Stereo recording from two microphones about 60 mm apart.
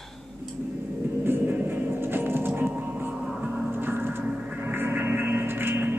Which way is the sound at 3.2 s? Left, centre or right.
Centre.